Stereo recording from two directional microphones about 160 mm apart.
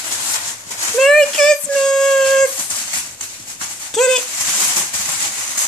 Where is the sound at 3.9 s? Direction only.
5° left (ahead or behind).